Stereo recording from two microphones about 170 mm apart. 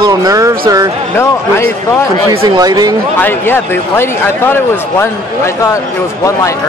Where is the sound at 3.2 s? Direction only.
10° left (ahead or behind).